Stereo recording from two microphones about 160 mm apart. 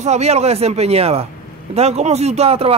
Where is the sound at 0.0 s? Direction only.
45° right (ahead or behind).